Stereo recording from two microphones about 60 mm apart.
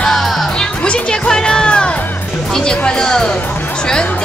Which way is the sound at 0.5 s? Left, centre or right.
Centre.